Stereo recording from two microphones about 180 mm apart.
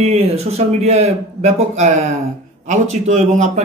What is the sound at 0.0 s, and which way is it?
A man's voice, 35° right (ahead or behind).